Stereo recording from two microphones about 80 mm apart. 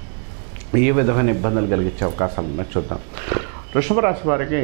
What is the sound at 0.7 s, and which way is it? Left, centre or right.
Speech, right.